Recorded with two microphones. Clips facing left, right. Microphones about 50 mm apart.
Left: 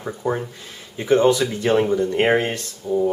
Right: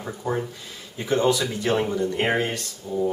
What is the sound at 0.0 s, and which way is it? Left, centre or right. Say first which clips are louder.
Speech: left 3 dB; centre.